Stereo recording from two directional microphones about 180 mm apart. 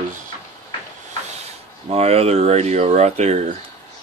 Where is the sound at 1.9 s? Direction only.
35° right (ahead or behind).